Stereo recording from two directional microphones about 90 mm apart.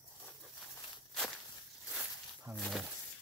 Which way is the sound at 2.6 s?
Centre (ahead or behind).